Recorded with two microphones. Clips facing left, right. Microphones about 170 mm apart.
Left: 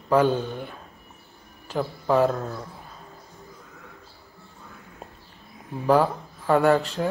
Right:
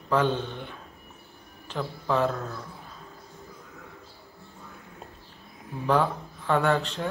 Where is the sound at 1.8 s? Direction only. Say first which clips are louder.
Left 5 dB; 35° left (ahead or behind).